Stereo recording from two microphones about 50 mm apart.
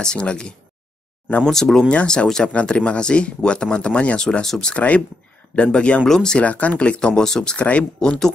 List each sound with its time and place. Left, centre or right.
0.0 s speech: centre
1.4 s speech: centre
1.9 s speech: centre
4.2 s speech: centre
4.7 s speech: left
6.4 s speech: left; by 7.5 s centre
7.5 s speech: left
8.0 s speech: centre